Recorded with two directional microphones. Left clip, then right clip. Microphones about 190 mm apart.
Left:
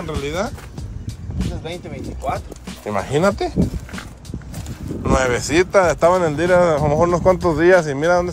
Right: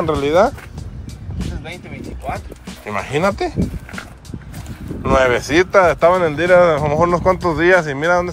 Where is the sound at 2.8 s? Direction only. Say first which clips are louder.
Even; 20° left (ahead or behind).